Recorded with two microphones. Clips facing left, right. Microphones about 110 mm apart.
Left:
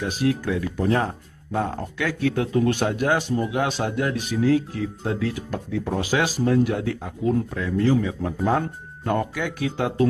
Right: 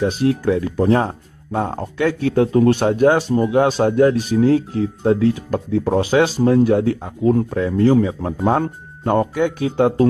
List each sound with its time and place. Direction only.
0.0 s speech: 30° right (ahead or behind)